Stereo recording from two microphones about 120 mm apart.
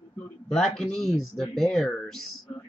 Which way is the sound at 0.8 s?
5° left (ahead or behind).